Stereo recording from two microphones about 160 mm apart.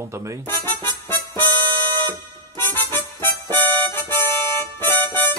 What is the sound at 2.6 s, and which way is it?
Music, 15° left (ahead or behind).